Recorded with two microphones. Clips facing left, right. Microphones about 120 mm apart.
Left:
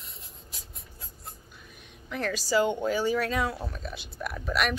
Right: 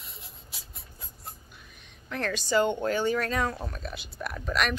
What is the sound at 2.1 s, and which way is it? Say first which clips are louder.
Speech: even; 5° left (ahead or behind).